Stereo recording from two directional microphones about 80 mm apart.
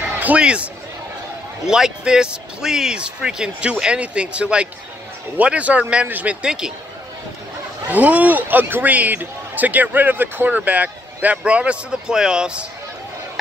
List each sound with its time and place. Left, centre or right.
0.2 s speech: centre
1.7 s speech: centre
7.9 s speech: centre